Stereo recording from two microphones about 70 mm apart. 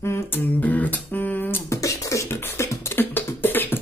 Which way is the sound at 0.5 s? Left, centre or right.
Left.